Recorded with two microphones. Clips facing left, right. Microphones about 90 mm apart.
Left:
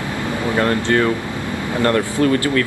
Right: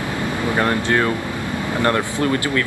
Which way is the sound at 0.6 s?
15° right (ahead or behind).